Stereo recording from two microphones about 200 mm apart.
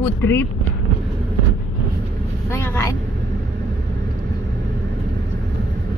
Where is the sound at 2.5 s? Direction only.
15° left (ahead or behind).